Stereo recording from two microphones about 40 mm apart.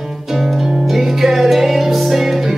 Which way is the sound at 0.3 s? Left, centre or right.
Centre.